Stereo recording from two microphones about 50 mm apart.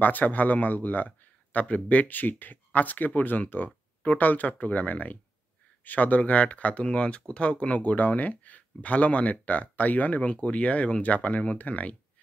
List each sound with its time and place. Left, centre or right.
0.0 s speech: left